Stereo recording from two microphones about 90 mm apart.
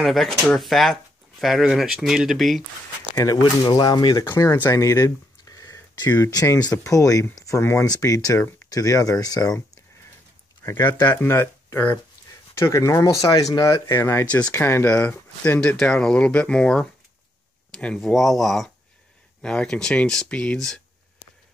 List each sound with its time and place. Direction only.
0.0 s speech: centre (ahead or behind)
3.6 s speech: 50° left (ahead or behind)
4.2 s speech: 35° left (ahead or behind)
10.6 s speech: 25° left (ahead or behind)
15.6 s speech: 10° left (ahead or behind)